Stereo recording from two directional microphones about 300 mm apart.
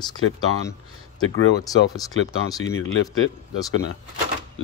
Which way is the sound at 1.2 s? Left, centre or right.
Left.